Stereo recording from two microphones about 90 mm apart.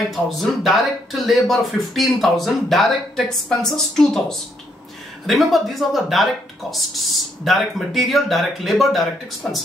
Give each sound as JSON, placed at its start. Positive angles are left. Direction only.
{"t": 0.1, "sound": "speech", "side_deg": 0}
{"t": 7.4, "sound": "speech", "side_deg": 0}